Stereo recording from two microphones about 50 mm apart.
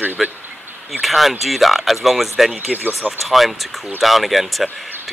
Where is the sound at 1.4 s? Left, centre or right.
Centre.